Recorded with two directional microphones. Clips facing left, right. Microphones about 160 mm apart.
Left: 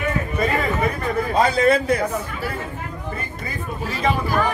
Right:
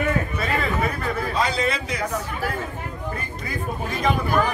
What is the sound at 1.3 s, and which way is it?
Speech, 50° left (ahead or behind).